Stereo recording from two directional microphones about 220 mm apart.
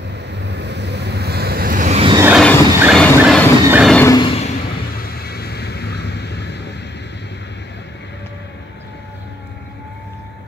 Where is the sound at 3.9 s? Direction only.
15° left (ahead or behind).